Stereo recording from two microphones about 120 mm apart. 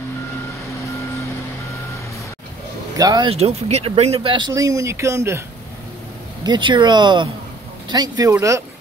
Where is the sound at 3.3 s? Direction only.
55° right (ahead or behind).